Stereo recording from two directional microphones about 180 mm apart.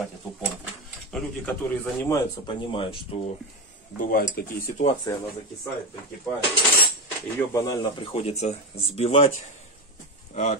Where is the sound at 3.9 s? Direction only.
50° left (ahead or behind).